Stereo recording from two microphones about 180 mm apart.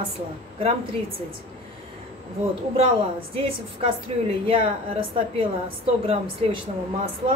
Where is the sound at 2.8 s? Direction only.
30° right (ahead or behind).